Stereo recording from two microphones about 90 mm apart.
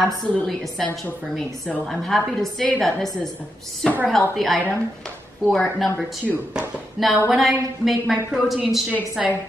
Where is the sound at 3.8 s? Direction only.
15° left (ahead or behind).